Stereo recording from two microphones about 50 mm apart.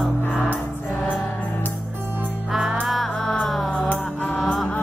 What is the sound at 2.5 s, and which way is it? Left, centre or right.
Music, centre.